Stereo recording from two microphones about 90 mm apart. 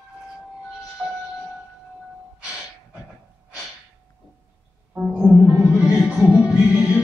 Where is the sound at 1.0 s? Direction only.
25° right (ahead or behind).